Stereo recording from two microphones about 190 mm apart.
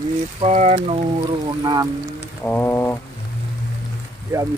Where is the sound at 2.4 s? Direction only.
10° left (ahead or behind).